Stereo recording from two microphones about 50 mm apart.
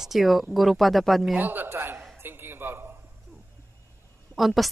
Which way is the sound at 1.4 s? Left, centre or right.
Right.